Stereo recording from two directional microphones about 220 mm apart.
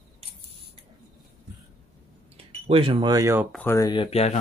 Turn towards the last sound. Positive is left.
turn(degrees=30)  # may be behind; listen again after turning